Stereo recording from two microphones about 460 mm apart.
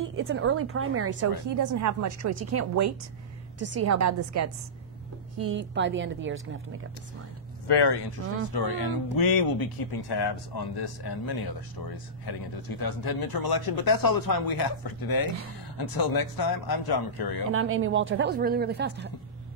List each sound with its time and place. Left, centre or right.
0.1 s speech: right
1.5 s a woman's voice: right
5.4 s speech: right
7.6 s speech: left
17.5 s speech: right